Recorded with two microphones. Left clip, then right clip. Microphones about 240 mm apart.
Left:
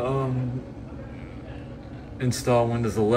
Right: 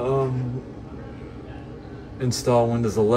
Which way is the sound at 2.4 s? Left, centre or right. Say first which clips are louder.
Right 2 dB; right.